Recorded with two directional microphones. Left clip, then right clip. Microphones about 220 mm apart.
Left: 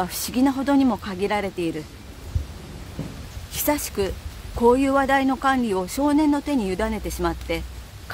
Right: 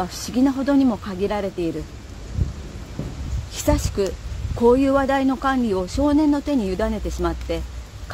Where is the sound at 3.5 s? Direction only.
5° right (ahead or behind).